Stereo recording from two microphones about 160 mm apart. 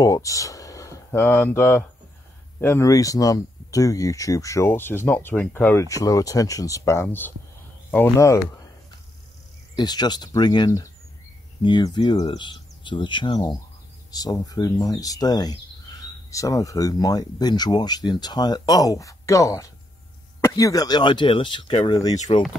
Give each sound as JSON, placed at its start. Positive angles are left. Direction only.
{"t": 0.0, "sound": "speech", "side_deg": 20}
{"t": 9.8, "sound": "speech", "side_deg": 25}